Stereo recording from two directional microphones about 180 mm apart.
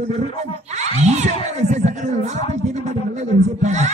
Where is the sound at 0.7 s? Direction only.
40° right (ahead or behind).